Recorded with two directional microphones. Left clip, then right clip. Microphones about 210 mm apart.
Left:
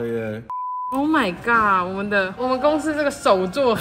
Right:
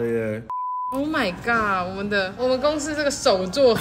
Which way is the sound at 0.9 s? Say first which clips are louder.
Left 7 dB; 25° left (ahead or behind).